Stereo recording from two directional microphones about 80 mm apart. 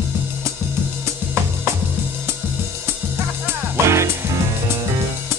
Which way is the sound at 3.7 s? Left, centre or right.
Right.